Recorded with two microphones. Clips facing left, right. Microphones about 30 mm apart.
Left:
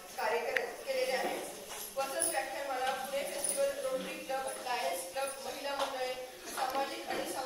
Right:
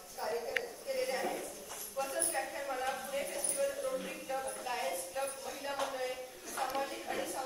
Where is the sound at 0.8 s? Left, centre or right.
Left.